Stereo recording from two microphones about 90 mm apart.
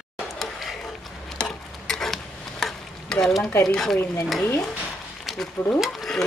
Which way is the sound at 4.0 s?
30° left (ahead or behind).